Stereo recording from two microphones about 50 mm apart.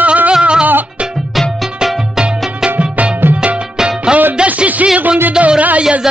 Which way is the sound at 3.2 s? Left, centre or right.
Right.